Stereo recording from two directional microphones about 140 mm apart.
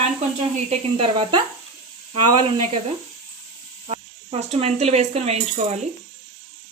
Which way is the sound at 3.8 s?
50° right (ahead or behind).